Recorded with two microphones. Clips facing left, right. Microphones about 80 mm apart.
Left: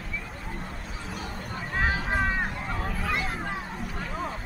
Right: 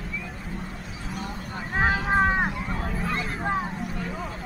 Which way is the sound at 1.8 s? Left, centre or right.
Right.